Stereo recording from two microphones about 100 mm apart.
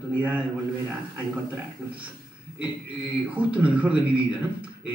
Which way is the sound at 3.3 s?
15° right (ahead or behind).